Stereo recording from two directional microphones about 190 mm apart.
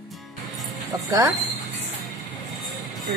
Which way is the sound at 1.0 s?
20° right (ahead or behind).